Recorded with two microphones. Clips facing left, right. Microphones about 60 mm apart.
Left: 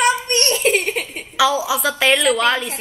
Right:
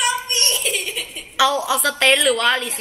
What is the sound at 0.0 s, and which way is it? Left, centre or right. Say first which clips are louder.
Giggle: left 5 dB; left.